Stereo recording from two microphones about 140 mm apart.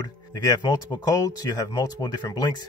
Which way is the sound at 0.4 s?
25° left (ahead or behind).